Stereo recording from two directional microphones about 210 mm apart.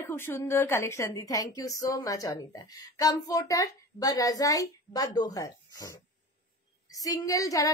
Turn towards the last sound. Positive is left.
turn(degrees=15)  # may be behind; listen again after turning